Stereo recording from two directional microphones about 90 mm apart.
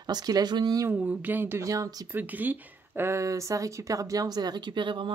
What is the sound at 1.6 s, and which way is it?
Speech, 40° right (ahead or behind).